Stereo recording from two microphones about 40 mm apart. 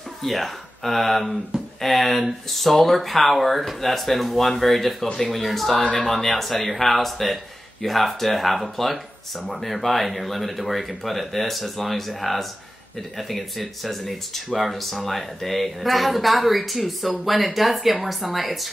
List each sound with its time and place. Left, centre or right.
0.2 s speech: centre